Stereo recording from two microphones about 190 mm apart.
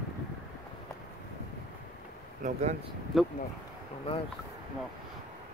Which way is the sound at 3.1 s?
Centre (ahead or behind).